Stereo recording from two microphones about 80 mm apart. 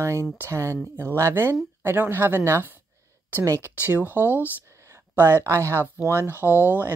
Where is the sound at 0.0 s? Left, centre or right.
Right.